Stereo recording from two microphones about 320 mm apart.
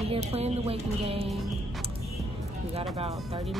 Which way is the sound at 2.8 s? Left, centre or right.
Centre.